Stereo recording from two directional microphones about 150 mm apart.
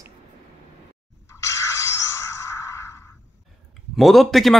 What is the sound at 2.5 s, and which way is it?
Music, 20° left (ahead or behind).